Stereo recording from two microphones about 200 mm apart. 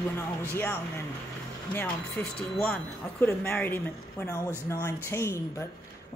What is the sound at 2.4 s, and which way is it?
Speech, 5° left (ahead or behind).